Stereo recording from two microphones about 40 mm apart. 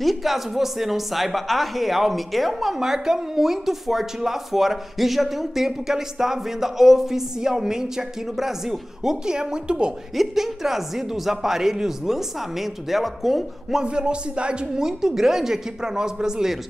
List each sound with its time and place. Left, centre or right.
0.0 s a woman's voice: centre
2.8 s speech: centre
10.1 s speech: centre
13.8 s speech: right